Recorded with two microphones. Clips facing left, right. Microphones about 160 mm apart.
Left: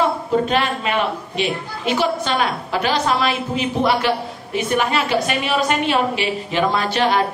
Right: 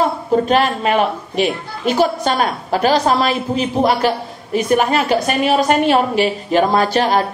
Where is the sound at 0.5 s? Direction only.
40° right (ahead or behind).